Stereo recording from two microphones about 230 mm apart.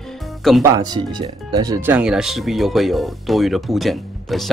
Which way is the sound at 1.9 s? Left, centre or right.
Centre.